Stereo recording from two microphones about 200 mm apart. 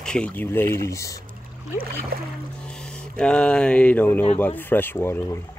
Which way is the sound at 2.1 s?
50° right (ahead or behind).